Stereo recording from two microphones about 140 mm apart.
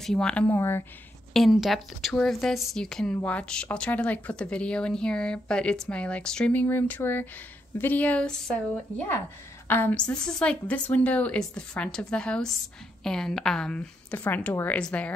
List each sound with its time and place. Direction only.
0.0 s speech: 5° left (ahead or behind)
1.3 s a woman's voice: centre (ahead or behind)